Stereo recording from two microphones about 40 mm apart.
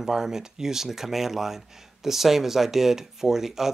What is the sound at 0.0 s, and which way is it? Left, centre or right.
Speech, centre.